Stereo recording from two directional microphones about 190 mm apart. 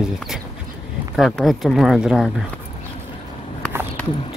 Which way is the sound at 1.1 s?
Centre (ahead or behind).